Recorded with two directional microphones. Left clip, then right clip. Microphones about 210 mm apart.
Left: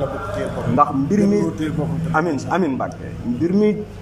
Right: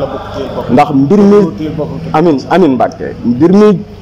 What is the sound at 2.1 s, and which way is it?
Speech, 45° right (ahead or behind).